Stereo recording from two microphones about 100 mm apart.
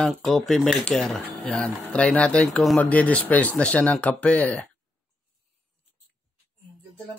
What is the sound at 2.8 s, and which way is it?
Speech, 15° left (ahead or behind).